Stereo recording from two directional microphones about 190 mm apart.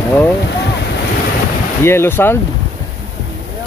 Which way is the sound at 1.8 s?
15° left (ahead or behind).